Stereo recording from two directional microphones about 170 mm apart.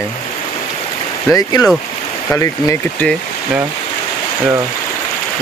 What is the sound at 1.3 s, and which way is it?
Speech, 20° left (ahead or behind).